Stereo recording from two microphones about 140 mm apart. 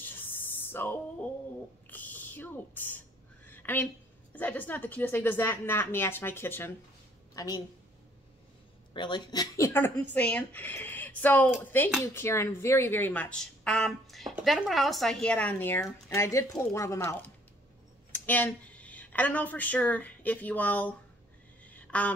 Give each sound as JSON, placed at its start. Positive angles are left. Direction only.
{"t": 0.0, "sound": "a sound", "side_deg": 15}
{"t": 3.4, "sound": "a woman's voice", "side_deg": 15}
{"t": 7.3, "sound": "a woman's voice", "side_deg": 30}
{"t": 8.9, "sound": "speech", "side_deg": 35}
{"t": 9.7, "sound": "a woman's voice", "side_deg": 15}
{"t": 21.6, "sound": "a sound", "side_deg": 10}